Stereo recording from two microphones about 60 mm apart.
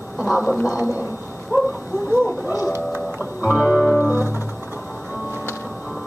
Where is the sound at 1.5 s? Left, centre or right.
Right.